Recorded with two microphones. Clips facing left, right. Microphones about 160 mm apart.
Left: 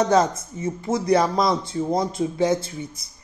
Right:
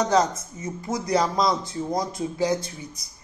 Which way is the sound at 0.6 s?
25° left (ahead or behind).